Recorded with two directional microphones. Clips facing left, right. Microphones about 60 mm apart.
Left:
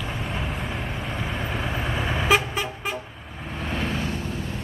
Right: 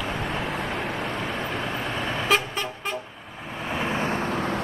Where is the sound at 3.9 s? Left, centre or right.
Right.